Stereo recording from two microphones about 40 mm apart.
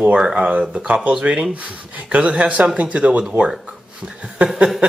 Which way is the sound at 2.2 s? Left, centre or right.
Right.